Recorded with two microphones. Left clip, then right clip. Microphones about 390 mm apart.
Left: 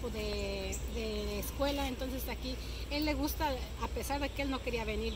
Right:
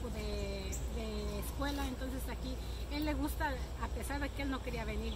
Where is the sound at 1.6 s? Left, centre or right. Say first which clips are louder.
Left 6 dB; centre.